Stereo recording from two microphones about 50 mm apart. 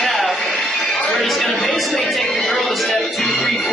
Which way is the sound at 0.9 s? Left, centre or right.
Left.